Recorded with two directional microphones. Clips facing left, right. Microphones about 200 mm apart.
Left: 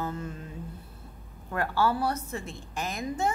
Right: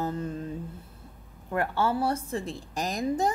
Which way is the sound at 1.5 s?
25° right (ahead or behind).